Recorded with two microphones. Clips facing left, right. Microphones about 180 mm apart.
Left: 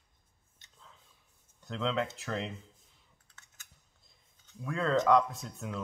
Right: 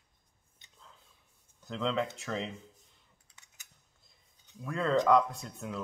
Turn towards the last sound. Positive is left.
turn(degrees=0)  # may be behind; listen again after turning